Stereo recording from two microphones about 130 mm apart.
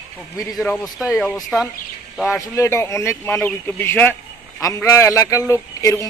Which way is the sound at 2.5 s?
20° left (ahead or behind).